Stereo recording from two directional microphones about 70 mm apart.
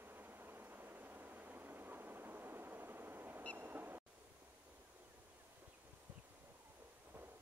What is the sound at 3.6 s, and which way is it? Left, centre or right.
Train, right.